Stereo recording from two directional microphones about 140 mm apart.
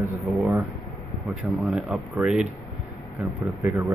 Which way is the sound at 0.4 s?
5° right (ahead or behind).